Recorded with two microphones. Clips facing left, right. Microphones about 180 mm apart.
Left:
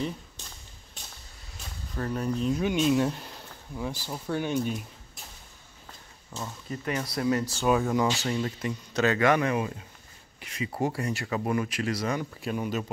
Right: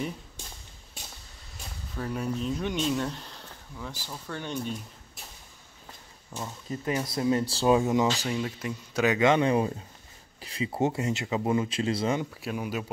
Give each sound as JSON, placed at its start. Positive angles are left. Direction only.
{"t": 2.0, "sound": "speech", "side_deg": -5}
{"t": 6.3, "sound": "speech", "side_deg": -15}
{"t": 8.2, "sound": "speech", "side_deg": -5}
{"t": 9.0, "sound": "speech", "side_deg": -20}
{"t": 12.4, "sound": "speech", "side_deg": -5}